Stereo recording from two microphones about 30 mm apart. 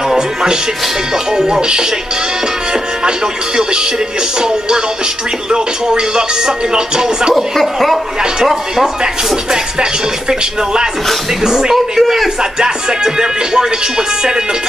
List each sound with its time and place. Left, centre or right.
1.3 s music: right
3.1 s music: right
7.3 s speech: centre
8.8 s music: right
11.4 s speech: centre
11.7 s speech: centre
12.5 s music: right